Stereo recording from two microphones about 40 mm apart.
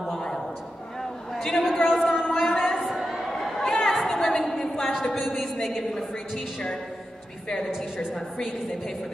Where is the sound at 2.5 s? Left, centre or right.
Centre.